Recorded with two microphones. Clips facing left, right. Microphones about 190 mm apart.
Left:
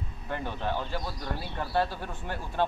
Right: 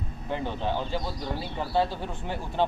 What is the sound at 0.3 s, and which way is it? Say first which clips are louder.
Speech: right 3 dB; 20° right (ahead or behind).